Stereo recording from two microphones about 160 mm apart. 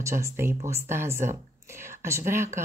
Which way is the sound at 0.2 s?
15° right (ahead or behind).